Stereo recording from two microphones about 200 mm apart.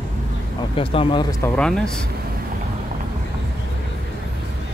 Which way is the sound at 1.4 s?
5° left (ahead or behind).